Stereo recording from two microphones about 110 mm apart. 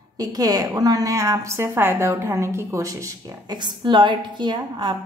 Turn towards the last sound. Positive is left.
turn(degrees=-45)  # may be behind; listen again after turning